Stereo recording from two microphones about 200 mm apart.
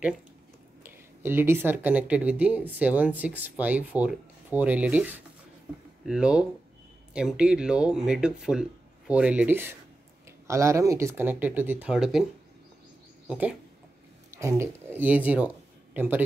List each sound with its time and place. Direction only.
0.8 s speech: 10° right (ahead or behind)
13.3 s speech: 5° right (ahead or behind)